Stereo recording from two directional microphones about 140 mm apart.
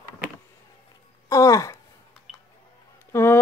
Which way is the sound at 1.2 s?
25° left (ahead or behind).